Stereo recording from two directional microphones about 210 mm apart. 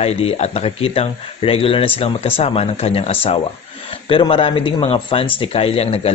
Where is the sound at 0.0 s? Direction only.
30° left (ahead or behind).